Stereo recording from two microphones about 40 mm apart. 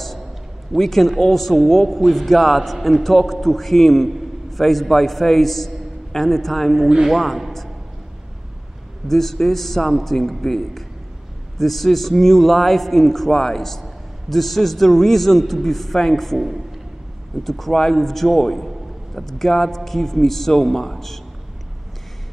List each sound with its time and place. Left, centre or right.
0.7 s a man's voice: centre
9.0 s a man's voice: centre